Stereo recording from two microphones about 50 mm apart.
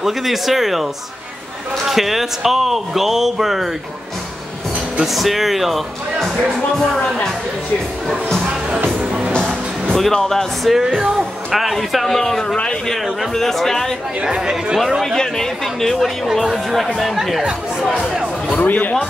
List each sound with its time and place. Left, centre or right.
0.0 s speech: centre
1.9 s speech: centre
5.0 s speech: centre
9.9 s speech: centre
11.0 s speech: centre
14.2 s speech: centre
14.9 s speech: centre
15.1 s speech: centre
17.4 s speech: centre
18.5 s speech: left